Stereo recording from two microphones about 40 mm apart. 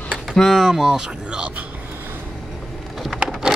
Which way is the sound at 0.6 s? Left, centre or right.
Centre.